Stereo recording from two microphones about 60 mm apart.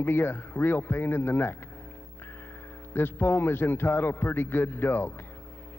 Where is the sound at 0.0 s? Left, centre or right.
Left.